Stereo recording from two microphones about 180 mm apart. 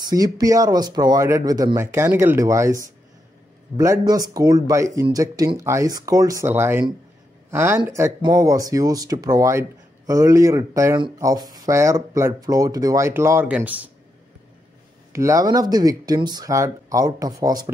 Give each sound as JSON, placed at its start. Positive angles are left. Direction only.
{"t": 0.0, "sound": "speech", "side_deg": -20}
{"t": 15.1, "sound": "speech", "side_deg": -15}